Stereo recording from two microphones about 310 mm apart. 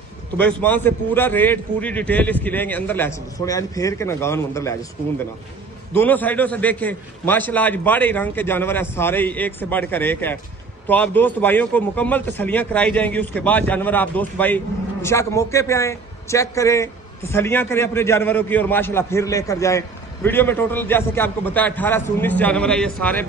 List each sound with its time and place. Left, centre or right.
0.4 s a man's voice: centre
5.9 s a man's voice: centre